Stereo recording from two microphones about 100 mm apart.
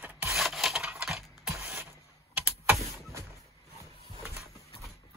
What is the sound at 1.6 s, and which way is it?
Computer keyboard, 20° right (ahead or behind).